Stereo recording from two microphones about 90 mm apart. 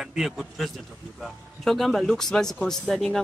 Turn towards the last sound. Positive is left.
turn(degrees=5)  # may be behind; listen again after turning